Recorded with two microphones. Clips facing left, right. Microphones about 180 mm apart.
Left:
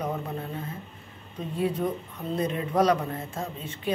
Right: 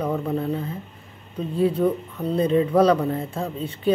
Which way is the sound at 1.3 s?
30° right (ahead or behind).